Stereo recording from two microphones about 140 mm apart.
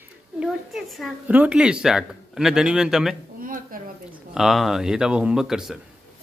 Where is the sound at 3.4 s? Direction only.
85° right.